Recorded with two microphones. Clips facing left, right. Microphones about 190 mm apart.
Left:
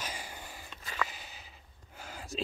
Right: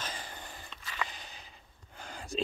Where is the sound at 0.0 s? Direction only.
10° left (ahead or behind).